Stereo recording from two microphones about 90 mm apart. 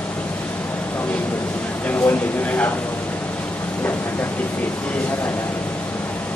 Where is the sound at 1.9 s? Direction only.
20° left (ahead or behind).